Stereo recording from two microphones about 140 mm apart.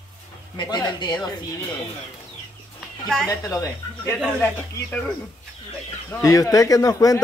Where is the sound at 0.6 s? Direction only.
30° left (ahead or behind).